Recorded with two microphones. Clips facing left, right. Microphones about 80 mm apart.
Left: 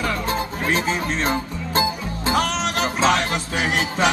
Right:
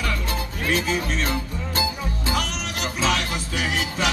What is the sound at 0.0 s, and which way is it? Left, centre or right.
Music, left.